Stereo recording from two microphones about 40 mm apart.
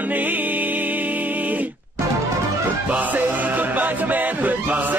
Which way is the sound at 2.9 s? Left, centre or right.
Right.